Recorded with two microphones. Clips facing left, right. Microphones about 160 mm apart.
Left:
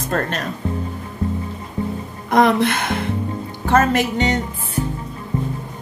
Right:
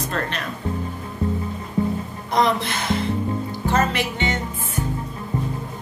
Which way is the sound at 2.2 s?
55° left (ahead or behind).